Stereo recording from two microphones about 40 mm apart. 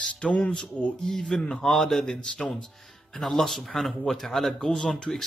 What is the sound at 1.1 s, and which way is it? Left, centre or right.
Speech, centre.